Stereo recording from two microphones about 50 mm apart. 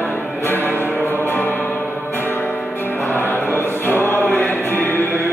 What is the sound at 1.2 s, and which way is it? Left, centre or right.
Music, left.